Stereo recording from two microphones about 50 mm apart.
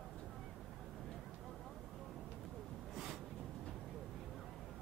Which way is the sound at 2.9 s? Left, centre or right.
Centre.